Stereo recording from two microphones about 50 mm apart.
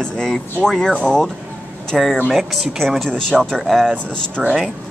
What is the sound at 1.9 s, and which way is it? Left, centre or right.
Speech, centre.